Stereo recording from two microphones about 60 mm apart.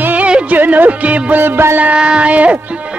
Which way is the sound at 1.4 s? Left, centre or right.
Right.